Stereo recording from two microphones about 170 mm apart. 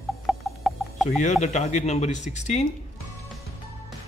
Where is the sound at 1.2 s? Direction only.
45° left (ahead or behind).